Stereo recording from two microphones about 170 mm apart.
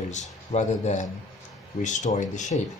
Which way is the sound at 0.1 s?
45° left (ahead or behind).